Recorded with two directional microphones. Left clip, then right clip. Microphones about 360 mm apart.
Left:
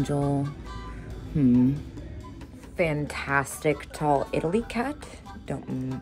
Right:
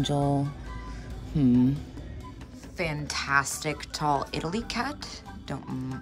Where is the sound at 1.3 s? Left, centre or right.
Centre.